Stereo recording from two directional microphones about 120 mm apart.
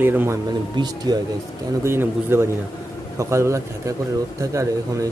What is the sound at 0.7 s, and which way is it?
Speech, 35° right (ahead or behind).